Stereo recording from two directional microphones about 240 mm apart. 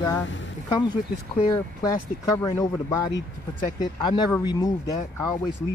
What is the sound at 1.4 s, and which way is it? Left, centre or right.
Speech, centre.